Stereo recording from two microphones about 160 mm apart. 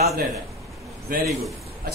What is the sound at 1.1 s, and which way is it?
Speech, 65° right (ahead or behind).